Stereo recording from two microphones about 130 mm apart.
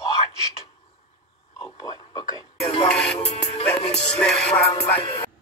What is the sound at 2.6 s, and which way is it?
Music, 45° left (ahead or behind).